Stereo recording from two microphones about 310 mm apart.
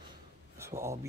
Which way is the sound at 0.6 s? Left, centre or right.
Centre.